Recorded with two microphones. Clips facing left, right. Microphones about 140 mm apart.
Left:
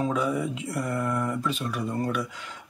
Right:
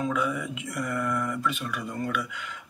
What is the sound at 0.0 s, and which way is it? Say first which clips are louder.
Speech: left 2 dB; 35° left (ahead or behind).